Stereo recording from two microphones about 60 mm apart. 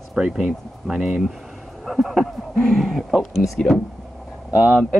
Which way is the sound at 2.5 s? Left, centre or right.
Centre.